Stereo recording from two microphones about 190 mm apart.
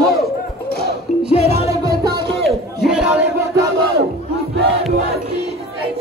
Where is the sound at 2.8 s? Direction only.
5° right (ahead or behind).